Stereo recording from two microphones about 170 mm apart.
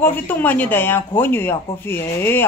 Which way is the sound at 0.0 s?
10° left (ahead or behind).